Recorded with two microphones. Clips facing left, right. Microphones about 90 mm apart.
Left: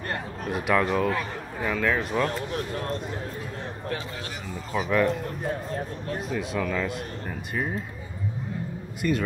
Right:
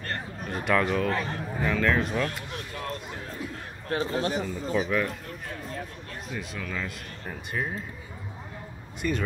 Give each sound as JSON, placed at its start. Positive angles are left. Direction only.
{"t": 0.4, "sound": "a man's voice", "side_deg": 5}
{"t": 3.9, "sound": "speech", "side_deg": -35}
{"t": 4.5, "sound": "a man's voice", "side_deg": 5}
{"t": 5.5, "sound": "speech", "side_deg": 40}
{"t": 6.2, "sound": "a man's voice", "side_deg": 0}
{"t": 9.0, "sound": "a man's voice", "side_deg": 0}